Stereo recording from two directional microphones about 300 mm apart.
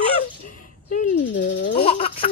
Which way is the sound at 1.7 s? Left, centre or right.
Left.